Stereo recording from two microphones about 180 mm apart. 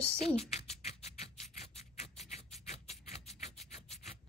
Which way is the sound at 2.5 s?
35° left (ahead or behind).